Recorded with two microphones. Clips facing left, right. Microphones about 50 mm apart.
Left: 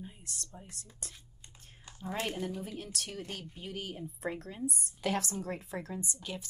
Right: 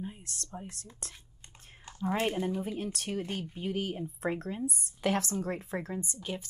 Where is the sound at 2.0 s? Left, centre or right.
Right.